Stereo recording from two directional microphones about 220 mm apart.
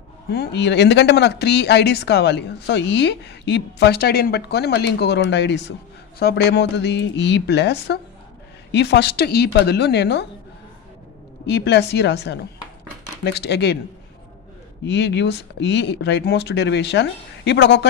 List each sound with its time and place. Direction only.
0.3 s speech: 50° left (ahead or behind)
11.4 s speech: 50° left (ahead or behind)
14.9 s speech: 50° left (ahead or behind)